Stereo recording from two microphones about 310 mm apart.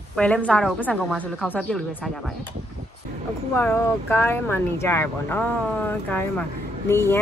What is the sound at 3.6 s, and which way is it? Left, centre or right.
A woman's voice, centre.